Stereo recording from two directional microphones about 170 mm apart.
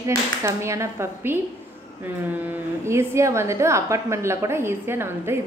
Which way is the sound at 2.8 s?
15° right (ahead or behind).